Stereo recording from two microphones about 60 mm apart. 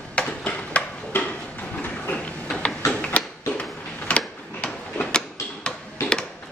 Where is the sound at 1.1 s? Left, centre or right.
Left.